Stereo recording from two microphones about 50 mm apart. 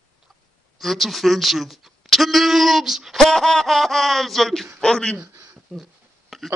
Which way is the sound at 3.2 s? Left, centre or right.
Centre.